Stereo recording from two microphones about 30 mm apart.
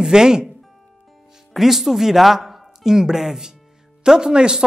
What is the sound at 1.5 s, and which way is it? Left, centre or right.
Speech, centre.